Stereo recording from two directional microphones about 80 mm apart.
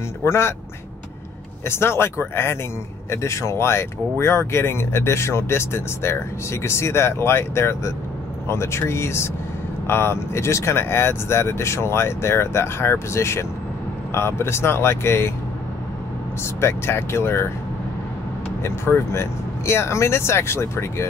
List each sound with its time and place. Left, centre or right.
0.2 s speech: left
1.7 s speech: left
16.6 s speech: left
18.6 s speech: left